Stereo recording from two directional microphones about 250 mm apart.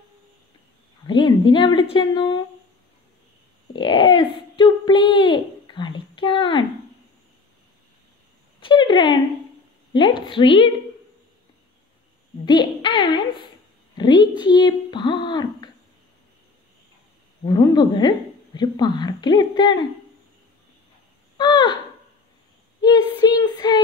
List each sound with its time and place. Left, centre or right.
1.0 s speech: centre
3.7 s speech: centre
8.5 s a sound: centre
9.9 s speech: centre
12.4 s a woman's voice: centre
17.5 s a woman's voice: centre
21.4 s a sound: centre
22.8 s a woman's voice: centre